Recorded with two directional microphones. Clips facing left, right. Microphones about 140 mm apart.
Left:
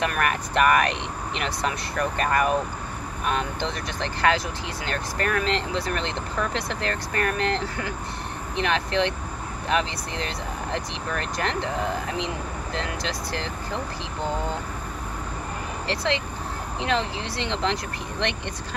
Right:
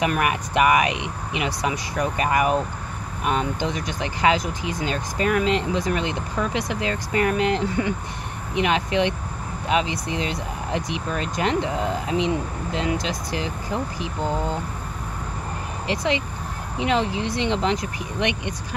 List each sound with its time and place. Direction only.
0.0 s speech: 15° right (ahead or behind)
15.9 s speech: 15° right (ahead or behind)